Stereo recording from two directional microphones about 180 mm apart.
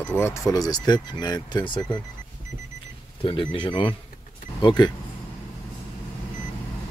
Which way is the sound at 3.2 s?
30° left (ahead or behind).